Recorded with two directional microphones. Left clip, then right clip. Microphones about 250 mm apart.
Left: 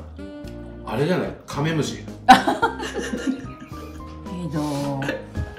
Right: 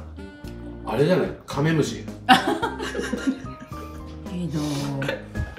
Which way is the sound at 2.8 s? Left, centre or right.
Right.